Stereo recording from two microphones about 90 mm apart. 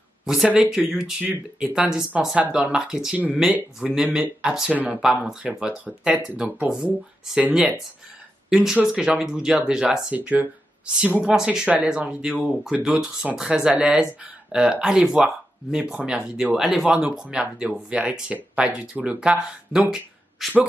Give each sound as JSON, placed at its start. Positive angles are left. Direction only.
{"t": 0.2, "sound": "speech", "side_deg": 0}
{"t": 11.3, "sound": "speech", "side_deg": -5}